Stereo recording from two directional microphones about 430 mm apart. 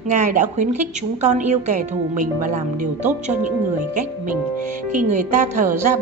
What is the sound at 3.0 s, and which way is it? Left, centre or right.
Speech, centre.